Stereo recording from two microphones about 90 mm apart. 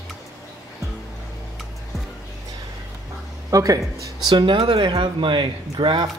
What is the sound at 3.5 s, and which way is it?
Speech, 40° right (ahead or behind).